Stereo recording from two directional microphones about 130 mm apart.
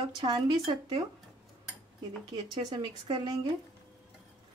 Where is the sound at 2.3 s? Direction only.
35° right (ahead or behind).